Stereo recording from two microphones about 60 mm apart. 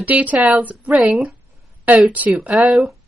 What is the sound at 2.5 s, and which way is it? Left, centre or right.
Speech, centre.